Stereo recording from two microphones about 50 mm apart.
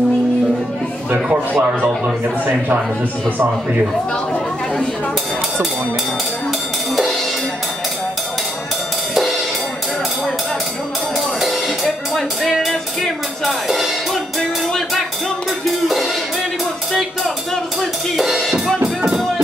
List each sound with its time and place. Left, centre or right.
1.1 s a sound: right
11.1 s music: centre
15.6 s music: centre
18.1 s music: centre